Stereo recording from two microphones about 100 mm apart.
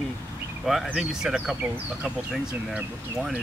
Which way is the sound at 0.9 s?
5° right (ahead or behind).